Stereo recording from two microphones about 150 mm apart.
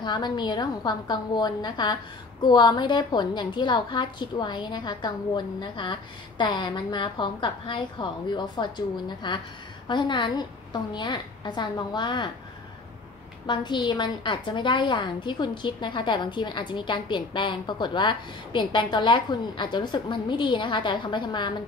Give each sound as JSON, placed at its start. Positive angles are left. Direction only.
{"t": 0.0, "sound": "a woman's voice", "side_deg": 30}
{"t": 13.5, "sound": "a woman's voice", "side_deg": 30}